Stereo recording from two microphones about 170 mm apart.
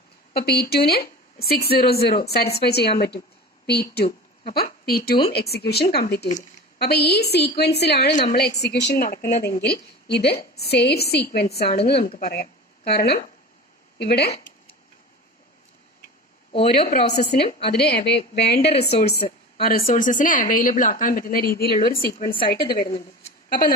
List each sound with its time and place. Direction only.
0.3 s a woman's voice: 70° left (ahead or behind)
8.1 s a woman's voice: 50° left (ahead or behind)
8.4 s a woman's voice: 70° left (ahead or behind)
16.7 s a woman's voice: 70° left (ahead or behind)
18.6 s a woman's voice: 40° left (ahead or behind)
19.6 s a woman's voice: 55° left (ahead or behind)